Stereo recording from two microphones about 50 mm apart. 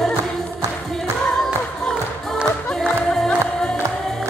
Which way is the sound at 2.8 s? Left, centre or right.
Centre.